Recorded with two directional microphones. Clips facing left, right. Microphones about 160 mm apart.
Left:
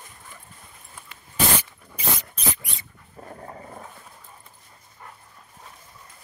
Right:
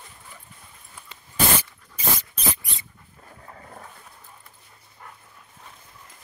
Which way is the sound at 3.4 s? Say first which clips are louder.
Left 2 dB; 25° left (ahead or behind).